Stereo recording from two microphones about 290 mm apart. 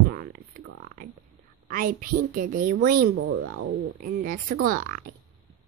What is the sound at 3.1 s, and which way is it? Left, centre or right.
Speech, right.